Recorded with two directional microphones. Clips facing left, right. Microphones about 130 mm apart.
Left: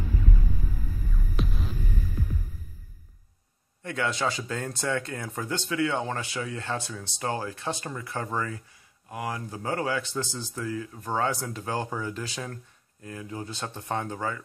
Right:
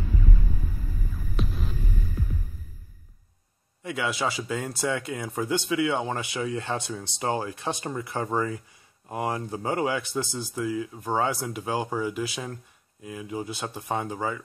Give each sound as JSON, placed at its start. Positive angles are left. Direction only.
{"t": 1.3, "sound": "throbbing", "side_deg": 0}
{"t": 3.8, "sound": "speech", "side_deg": -10}